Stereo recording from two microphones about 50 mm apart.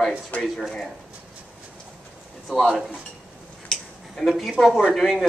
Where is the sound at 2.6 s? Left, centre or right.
Centre.